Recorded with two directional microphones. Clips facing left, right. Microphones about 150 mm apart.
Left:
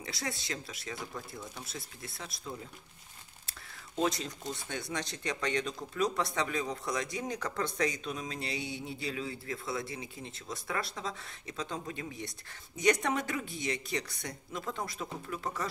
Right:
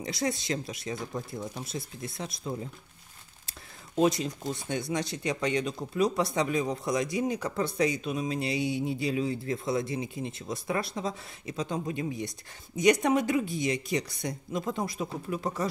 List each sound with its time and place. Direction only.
0.0 s speech: 20° right (ahead or behind)